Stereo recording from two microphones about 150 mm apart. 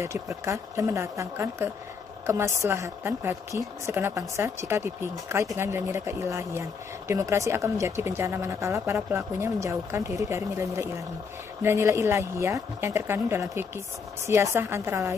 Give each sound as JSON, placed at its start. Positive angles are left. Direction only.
{"t": 0.0, "sound": "a woman's voice", "side_deg": -20}